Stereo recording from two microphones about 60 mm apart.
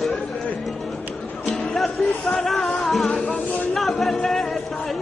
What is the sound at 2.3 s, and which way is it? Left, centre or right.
Music, centre.